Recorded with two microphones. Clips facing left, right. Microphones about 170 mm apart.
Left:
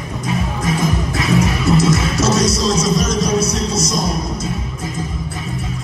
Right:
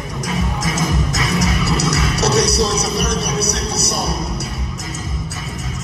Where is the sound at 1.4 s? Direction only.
75° right (ahead or behind).